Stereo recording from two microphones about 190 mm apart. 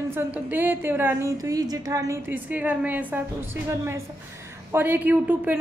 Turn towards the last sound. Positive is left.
turn(degrees=-10)  # may be behind; listen again after turning